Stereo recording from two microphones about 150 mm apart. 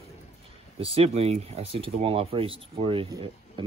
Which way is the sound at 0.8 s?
40° right (ahead or behind).